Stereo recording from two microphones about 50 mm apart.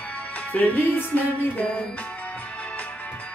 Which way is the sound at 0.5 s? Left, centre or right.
Left.